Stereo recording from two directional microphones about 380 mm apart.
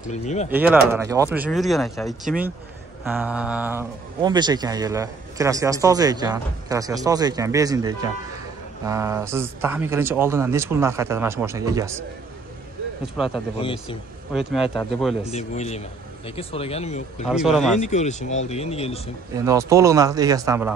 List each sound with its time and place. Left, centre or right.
0.0 s speech: centre
0.5 s speech: centre
13.3 s speech: centre
14.3 s speech: centre
15.2 s speech: centre
17.3 s speech: centre
17.7 s speech: centre
19.3 s speech: centre